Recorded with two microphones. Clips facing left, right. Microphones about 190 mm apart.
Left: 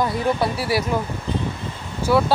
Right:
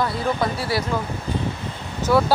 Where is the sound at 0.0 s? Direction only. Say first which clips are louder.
Left 2 dB; 15° left (ahead or behind).